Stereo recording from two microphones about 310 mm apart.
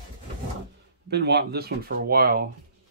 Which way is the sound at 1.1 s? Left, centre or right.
Right.